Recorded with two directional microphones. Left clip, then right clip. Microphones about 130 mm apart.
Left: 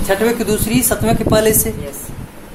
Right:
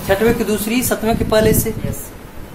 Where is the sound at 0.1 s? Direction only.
25° left (ahead or behind).